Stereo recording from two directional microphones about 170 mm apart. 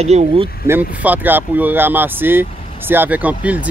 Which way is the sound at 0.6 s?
10° right (ahead or behind).